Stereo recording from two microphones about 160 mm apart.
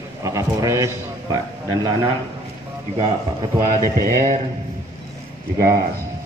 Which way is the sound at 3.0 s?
30° right (ahead or behind).